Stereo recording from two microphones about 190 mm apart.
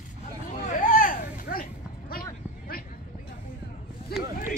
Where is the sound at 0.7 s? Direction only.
45° left (ahead or behind).